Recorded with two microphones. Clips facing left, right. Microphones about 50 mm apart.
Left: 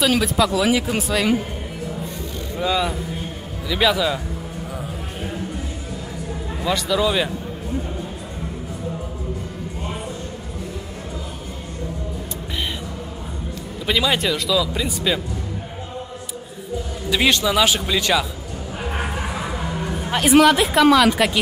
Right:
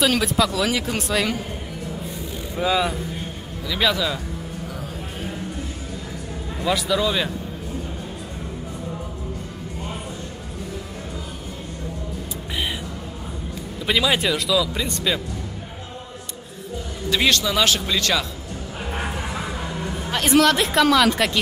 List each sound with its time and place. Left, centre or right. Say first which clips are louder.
0.0 s speech: left 1 dB; centre
2.5 s speech: even; centre
3.6 s speech: left 3 dB; centre
6.6 s speech: left 1 dB; centre
13.8 s speech: even; centre
17.3 s speech: left 3 dB; centre
19.5 s speech: left 2 dB; centre